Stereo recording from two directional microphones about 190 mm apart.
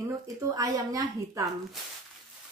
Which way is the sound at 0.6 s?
20° right (ahead or behind).